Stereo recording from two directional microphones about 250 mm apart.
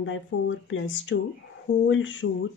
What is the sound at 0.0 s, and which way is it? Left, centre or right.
A woman's voice, left.